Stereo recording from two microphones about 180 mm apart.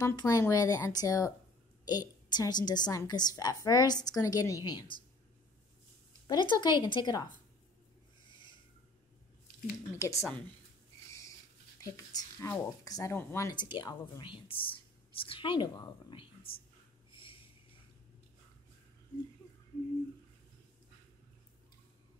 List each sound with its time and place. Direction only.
0.0 s speech: 20° left (ahead or behind)
6.2 s speech: 25° left (ahead or behind)
9.9 s a woman's voice: 15° left (ahead or behind)
11.1 s a sound: 15° left (ahead or behind)
11.8 s speech: 15° left (ahead or behind)
17.1 s snort: 30° left (ahead or behind)